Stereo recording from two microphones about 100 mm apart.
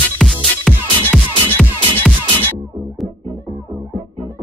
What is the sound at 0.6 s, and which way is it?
Music, 10° left (ahead or behind).